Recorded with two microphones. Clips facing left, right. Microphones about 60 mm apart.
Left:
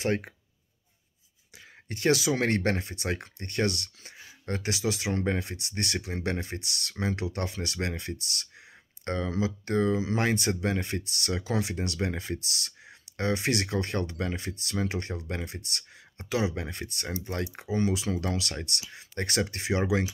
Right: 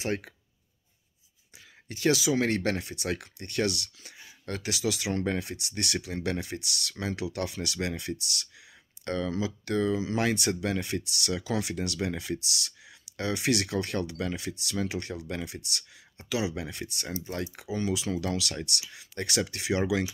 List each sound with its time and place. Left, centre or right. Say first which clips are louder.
0.0 s speech: left 3 dB; left
1.9 s speech: even; left